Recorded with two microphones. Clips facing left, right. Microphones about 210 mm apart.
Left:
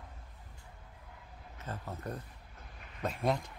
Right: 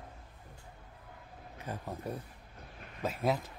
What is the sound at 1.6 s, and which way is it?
Speech, 15° right (ahead or behind).